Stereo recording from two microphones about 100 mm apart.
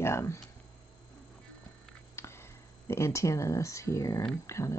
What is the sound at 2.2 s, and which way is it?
Speech, 25° left (ahead or behind).